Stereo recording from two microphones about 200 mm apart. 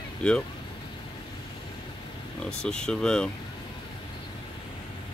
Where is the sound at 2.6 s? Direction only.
5° left (ahead or behind).